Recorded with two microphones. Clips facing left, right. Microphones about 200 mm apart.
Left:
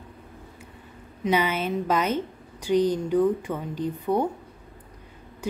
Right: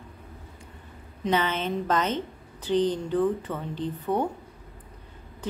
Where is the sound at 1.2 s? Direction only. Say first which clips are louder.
Left 2 dB; 10° left (ahead or behind).